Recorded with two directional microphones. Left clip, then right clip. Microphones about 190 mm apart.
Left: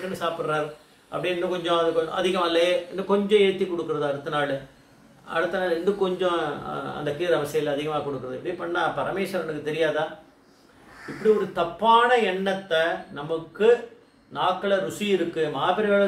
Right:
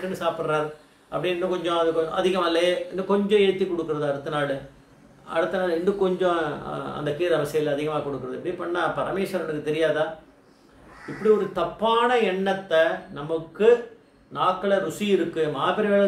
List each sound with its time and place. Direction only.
0.1 s a man's voice: 10° right (ahead or behind)
11.5 s a man's voice: 15° right (ahead or behind)